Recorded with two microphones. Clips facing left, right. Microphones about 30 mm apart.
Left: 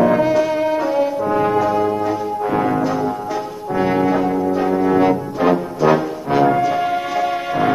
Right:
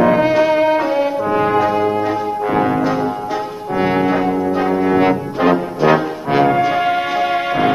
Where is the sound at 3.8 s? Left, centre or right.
Right.